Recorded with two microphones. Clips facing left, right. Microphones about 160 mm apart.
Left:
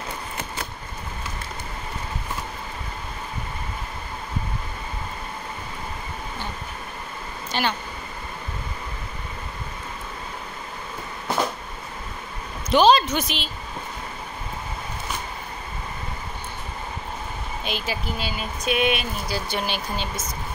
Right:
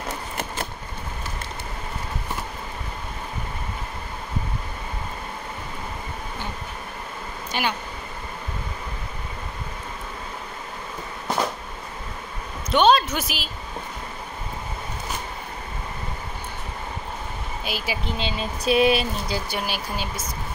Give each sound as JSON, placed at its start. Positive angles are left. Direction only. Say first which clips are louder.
{"t": 7.5, "sound": "speech", "louder": "left 1 dB", "side_deg": -10}
{"t": 12.6, "sound": "a sound", "louder": "left 1 dB", "side_deg": 0}
{"t": 17.6, "sound": "speech", "louder": "even", "side_deg": -5}
{"t": 18.0, "sound": "speech", "louder": "right 2 dB", "side_deg": -25}
{"t": 19.3, "sound": "speech", "louder": "left 4 dB", "side_deg": -5}